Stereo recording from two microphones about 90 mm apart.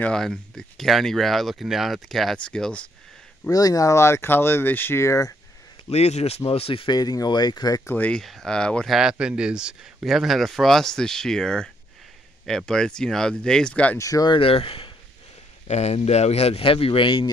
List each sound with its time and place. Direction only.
0.0 s speech: 5° left (ahead or behind)
3.4 s speech: 40° left (ahead or behind)
5.8 s a sound: 70° left (ahead or behind)
6.4 s speech: 85° left
6.9 s speech: 45° left (ahead or behind)
7.8 s speech: 20° left (ahead or behind)
8.1 s speech: 5° left (ahead or behind)
8.9 s speech: 10° right (ahead or behind); by 13.9 s 10° left (ahead or behind)
13.9 s speech: 40° left (ahead or behind)
14.3 s speech: 90° left
16.3 s speech: 90° left; by 17.3 s 65° left (ahead or behind)